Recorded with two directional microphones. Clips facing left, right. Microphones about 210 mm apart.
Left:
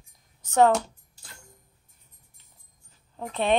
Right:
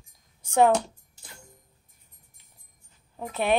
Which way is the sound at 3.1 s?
10° right (ahead or behind).